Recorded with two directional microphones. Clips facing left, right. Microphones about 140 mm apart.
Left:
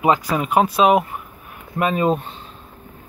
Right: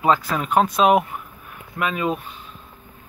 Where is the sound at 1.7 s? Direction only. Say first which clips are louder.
Left 5 dB; 35° left (ahead or behind).